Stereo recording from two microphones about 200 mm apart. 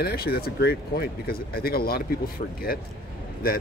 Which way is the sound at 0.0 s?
50° left (ahead or behind).